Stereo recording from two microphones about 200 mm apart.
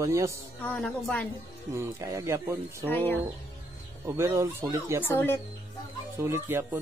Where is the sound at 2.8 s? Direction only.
10° left (ahead or behind).